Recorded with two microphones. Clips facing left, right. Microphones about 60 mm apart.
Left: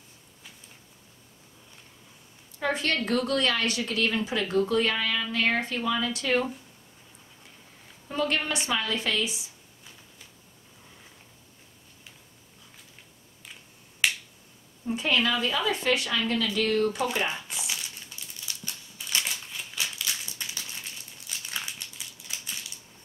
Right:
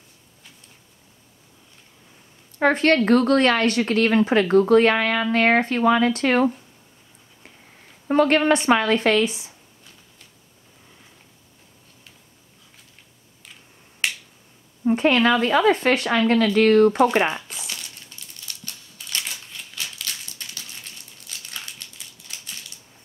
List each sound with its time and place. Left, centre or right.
2.6 s speech: right
8.1 s speech: right
14.9 s speech: right
17.5 s crumpling: centre